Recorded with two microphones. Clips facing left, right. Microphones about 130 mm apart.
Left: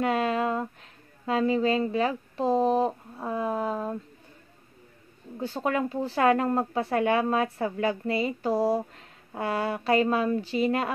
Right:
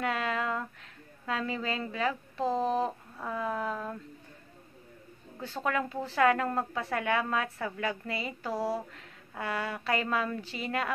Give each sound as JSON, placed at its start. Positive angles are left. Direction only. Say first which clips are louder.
{"t": 0.0, "sound": "speech", "louder": "left 6 dB", "side_deg": 25}
{"t": 5.4, "sound": "speech", "louder": "left 4 dB", "side_deg": 25}